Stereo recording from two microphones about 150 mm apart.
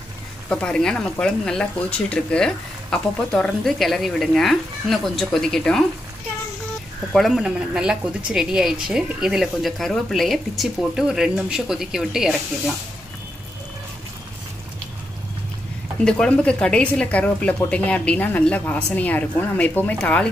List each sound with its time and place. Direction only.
0.5 s a woman's voice: 5° left (ahead or behind)
7.1 s a woman's voice: centre (ahead or behind)
16.0 s a woman's voice: 5° left (ahead or behind)